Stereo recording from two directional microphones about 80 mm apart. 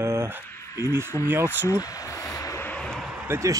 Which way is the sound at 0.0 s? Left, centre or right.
Right.